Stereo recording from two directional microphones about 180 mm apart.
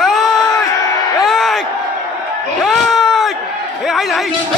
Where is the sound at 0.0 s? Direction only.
Centre (ahead or behind).